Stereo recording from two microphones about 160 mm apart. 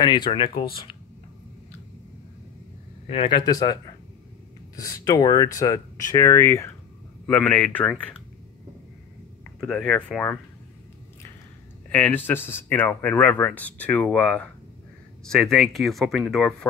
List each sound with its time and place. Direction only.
0.0 s speech: 30° left (ahead or behind)
3.1 s speech: 30° left (ahead or behind)
4.7 s speech: 20° left (ahead or behind); by 8.2 s 5° left (ahead or behind)
9.6 s speech: centre (ahead or behind)
11.9 s speech: 10° left (ahead or behind)